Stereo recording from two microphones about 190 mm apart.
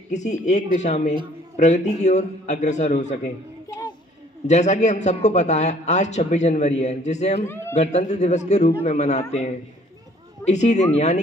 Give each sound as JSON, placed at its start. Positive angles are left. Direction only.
{"t": 0.1, "sound": "a man's voice", "side_deg": 40}
{"t": 3.6, "sound": "children playing", "side_deg": 20}
{"t": 4.5, "sound": "a man's voice", "side_deg": 35}
{"t": 7.4, "sound": "a man's voice", "side_deg": 15}
{"t": 7.7, "sound": "a man's voice", "side_deg": 35}
{"t": 10.4, "sound": "a man's voice", "side_deg": 35}